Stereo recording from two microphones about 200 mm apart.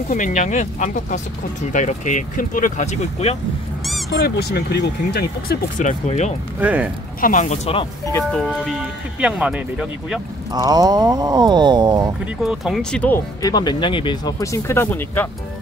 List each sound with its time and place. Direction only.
0.1 s speech: 40° left (ahead or behind)
4.2 s speech: 55° left (ahead or behind); by 6.3 s 35° left (ahead or behind)
6.6 s speech: 10° right (ahead or behind)
7.2 s speech: 40° left (ahead or behind)
8.0 s speech: 15° left (ahead or behind)
8.3 s speech: centre (ahead or behind)
10.5 s speech: 20° right (ahead or behind)
12.4 s speech: centre (ahead or behind)